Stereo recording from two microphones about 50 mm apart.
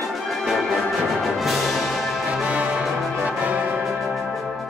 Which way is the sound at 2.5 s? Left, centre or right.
Right.